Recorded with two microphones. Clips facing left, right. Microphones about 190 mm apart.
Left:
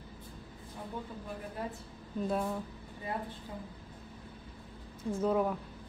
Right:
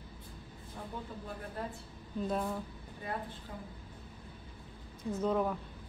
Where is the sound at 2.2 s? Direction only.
5° left (ahead or behind).